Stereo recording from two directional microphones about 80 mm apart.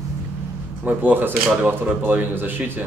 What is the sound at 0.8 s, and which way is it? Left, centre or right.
Speech, right.